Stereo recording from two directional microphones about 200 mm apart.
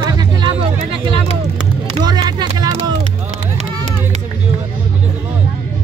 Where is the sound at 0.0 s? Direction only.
20° right (ahead or behind).